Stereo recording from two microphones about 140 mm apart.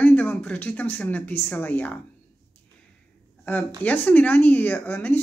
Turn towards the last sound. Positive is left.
turn(degrees=15)  # may be behind; listen again after turning